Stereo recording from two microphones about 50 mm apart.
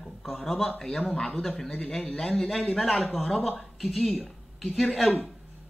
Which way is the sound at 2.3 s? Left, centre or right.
Centre.